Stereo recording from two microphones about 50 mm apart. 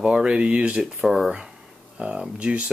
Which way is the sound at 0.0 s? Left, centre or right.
Centre.